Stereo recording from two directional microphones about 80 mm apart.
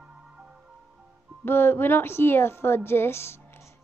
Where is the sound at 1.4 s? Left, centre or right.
Left.